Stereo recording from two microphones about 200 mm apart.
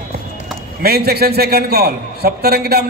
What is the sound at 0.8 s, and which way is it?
A man's voice, 50° right (ahead or behind).